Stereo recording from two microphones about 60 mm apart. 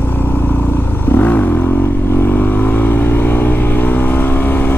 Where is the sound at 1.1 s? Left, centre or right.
Left.